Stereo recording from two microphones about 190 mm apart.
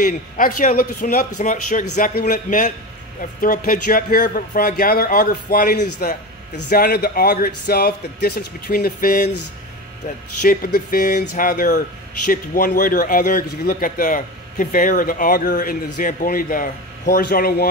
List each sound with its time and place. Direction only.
0.0 s a man's voice: 45° left (ahead or behind)